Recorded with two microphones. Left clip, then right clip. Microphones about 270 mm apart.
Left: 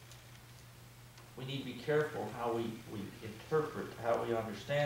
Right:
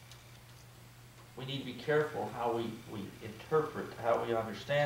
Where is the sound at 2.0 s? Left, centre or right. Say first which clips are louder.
Right 2 dB; centre.